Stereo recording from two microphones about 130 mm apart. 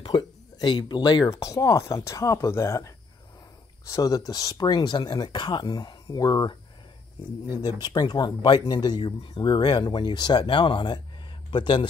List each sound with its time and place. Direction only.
0.0 s speech: 35° left (ahead or behind)
7.6 s speech: 30° left (ahead or behind)